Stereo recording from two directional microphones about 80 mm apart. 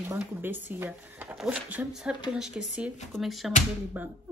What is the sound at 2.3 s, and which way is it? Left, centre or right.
Speech, centre.